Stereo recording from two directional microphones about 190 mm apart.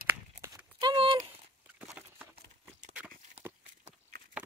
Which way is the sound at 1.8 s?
10° right (ahead or behind).